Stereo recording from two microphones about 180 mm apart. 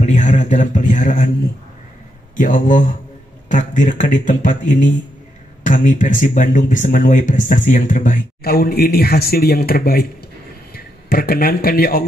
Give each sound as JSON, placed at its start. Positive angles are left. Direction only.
{"t": 0.0, "sound": "speech", "side_deg": 40}
{"t": 2.3, "sound": "speech", "side_deg": 45}